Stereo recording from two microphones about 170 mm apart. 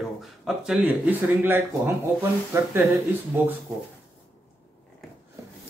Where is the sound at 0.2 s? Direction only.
Centre (ahead or behind).